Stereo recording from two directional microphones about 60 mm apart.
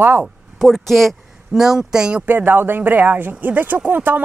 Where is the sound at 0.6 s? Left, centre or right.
Centre.